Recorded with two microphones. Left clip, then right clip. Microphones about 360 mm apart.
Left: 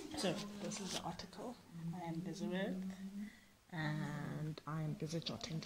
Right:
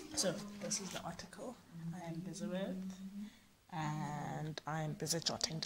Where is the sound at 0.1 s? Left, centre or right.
Right.